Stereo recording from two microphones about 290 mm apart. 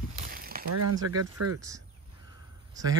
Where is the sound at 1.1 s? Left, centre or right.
Right.